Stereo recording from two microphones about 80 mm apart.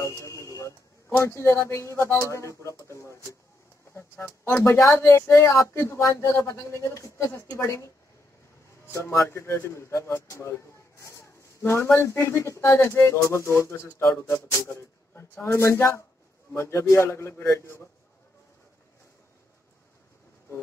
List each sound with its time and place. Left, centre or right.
0.0 s a sound: left
1.2 s a man's voice: left
8.9 s a man's voice: left